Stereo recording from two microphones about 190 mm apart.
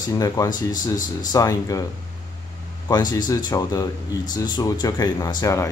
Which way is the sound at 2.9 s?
20° left (ahead or behind).